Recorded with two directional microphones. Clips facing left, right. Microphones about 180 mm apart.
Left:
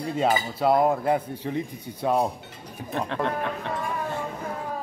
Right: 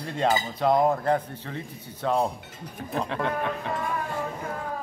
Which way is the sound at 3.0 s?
Centre (ahead or behind).